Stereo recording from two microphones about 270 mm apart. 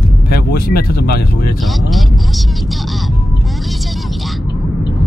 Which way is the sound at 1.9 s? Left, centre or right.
Centre.